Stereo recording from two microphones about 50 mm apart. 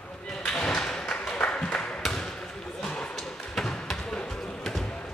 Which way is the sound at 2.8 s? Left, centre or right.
Centre.